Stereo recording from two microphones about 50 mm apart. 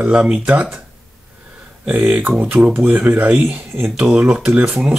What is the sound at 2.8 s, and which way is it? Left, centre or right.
Speech, right.